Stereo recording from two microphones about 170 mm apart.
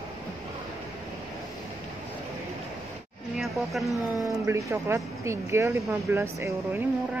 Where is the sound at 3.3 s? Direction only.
Centre (ahead or behind).